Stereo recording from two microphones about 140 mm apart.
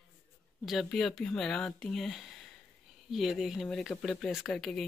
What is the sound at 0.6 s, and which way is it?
Speech, centre (ahead or behind).